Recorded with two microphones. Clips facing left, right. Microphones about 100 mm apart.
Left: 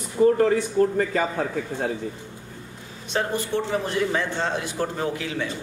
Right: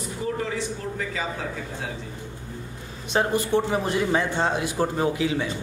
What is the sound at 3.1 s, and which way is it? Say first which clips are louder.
A man's voice: right 3 dB; 15° right (ahead or behind).